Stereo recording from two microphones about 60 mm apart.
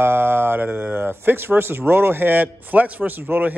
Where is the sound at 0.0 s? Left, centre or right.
Right.